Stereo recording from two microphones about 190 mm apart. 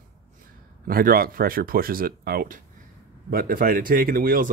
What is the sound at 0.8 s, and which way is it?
Speech, 50° right (ahead or behind).